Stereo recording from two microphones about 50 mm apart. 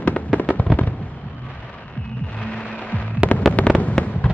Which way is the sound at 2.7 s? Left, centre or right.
Left.